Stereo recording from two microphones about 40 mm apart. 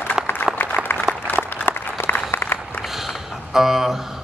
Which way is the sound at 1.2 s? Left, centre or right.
Left.